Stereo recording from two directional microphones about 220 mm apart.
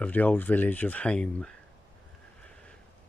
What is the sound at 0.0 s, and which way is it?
Speech, 5° left (ahead or behind).